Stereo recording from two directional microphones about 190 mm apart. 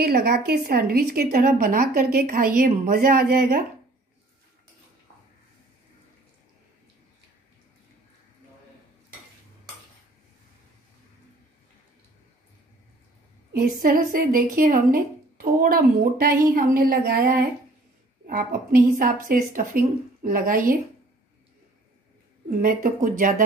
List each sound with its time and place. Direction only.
0.0 s speech: 55° right (ahead or behind)
13.5 s speech: 50° right (ahead or behind)
22.5 s speech: 45° right (ahead or behind)